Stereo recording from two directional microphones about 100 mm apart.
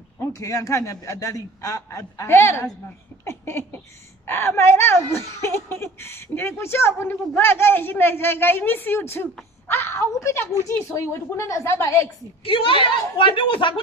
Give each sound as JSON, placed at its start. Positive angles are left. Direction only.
{"t": 0.2, "sound": "a man's voice", "side_deg": 35}
{"t": 3.3, "sound": "a sound", "side_deg": 25}
{"t": 4.3, "sound": "speech", "side_deg": 25}
{"t": 12.4, "sound": "a woman's voice", "side_deg": 65}